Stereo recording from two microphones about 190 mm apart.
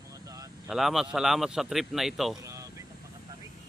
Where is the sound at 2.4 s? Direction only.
15° right (ahead or behind).